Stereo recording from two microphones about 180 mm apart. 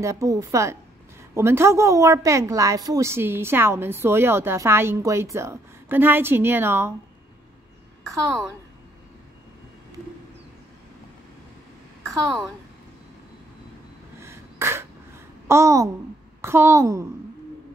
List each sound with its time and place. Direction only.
0.0 s a woman's voice: 20° right (ahead or behind)
8.1 s a woman's voice: centre (ahead or behind)
12.1 s speech: centre (ahead or behind)
14.2 s a sound: 15° right (ahead or behind)
15.4 s a child's voice: 15° right (ahead or behind)